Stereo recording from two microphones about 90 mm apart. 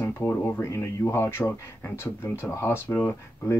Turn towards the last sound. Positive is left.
turn(degrees=25)  # may be behind; listen again after turning